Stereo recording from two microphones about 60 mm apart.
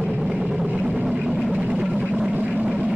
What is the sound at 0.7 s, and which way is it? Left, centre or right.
Vehicle, right.